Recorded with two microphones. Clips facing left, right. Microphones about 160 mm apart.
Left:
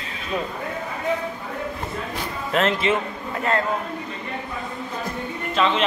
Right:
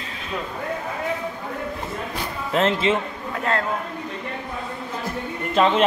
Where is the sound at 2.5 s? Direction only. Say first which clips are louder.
Right 1 dB; 25° right (ahead or behind).